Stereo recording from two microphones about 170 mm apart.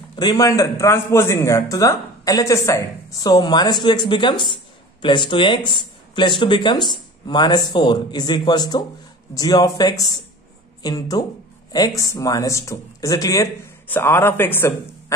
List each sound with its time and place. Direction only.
0.1 s a man's voice: 25° left (ahead or behind)